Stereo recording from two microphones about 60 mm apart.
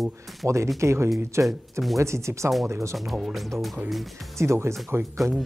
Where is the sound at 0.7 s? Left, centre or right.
Right.